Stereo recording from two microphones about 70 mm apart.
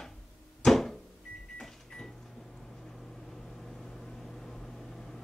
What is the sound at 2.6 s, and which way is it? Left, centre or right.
Vehicle, centre.